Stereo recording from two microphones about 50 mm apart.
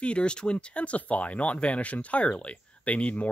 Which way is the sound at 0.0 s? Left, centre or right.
Left.